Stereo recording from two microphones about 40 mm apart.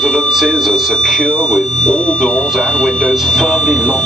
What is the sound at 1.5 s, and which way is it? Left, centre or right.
Speech, centre.